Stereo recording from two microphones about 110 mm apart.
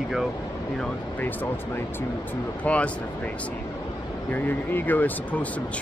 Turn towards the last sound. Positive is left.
turn(degrees=15)  # may be behind; listen again after turning